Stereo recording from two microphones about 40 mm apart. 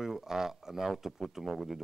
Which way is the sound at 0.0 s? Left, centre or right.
Centre.